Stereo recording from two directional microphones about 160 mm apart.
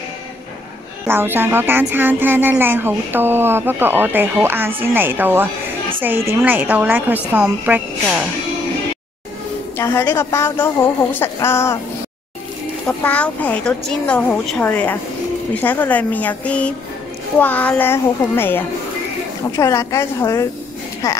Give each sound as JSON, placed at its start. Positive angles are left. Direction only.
{"t": 1.0, "sound": "speech", "side_deg": -15}
{"t": 9.8, "sound": "a woman's voice", "side_deg": 20}
{"t": 12.8, "sound": "a woman's voice", "side_deg": 10}
{"t": 21.0, "sound": "a sound", "side_deg": 20}